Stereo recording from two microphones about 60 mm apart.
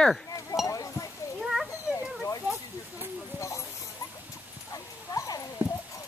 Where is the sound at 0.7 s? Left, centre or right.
Left.